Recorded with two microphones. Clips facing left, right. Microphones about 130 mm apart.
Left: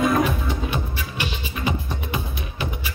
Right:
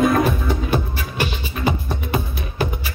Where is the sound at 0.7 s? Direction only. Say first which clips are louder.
Right 5 dB; 40° right (ahead or behind).